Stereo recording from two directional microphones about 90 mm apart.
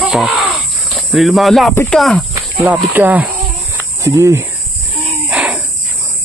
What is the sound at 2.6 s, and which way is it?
Speech, 20° right (ahead or behind).